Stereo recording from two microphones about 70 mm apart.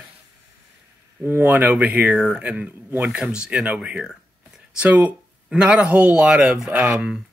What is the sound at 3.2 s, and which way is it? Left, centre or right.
Speech, centre.